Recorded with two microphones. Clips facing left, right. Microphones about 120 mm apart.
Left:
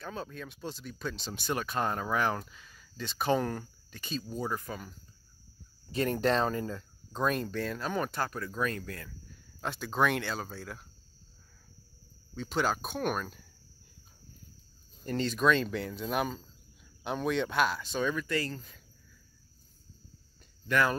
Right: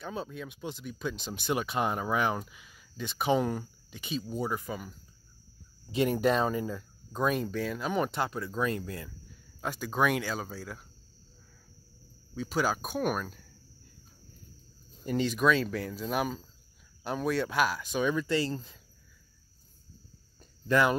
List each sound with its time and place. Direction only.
0.0 s speech: 15° right (ahead or behind)
6.1 s speech: 10° right (ahead or behind)
9.6 s speech: 10° right (ahead or behind)
12.4 s speech: 5° right (ahead or behind)
15.0 s speech: 10° right (ahead or behind)
18.2 s speech: 25° right (ahead or behind)
20.6 s speech: 25° right (ahead or behind)